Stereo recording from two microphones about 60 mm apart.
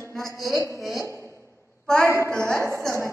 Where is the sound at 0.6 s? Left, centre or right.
Left.